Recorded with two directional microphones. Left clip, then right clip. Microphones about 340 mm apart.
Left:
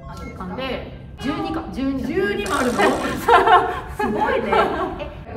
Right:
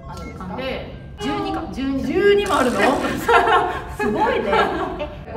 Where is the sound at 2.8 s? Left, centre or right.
Centre.